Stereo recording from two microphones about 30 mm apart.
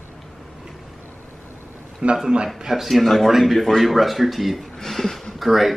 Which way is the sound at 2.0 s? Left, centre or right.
Right.